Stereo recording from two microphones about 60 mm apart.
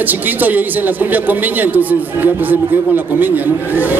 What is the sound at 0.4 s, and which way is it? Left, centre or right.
A man's voice, right.